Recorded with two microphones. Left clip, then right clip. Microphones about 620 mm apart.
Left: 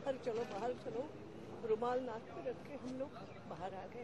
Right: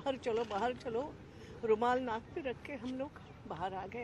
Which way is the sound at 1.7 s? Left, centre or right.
Right.